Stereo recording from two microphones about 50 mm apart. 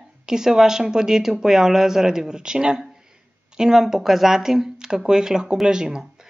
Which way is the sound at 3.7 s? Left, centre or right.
Centre.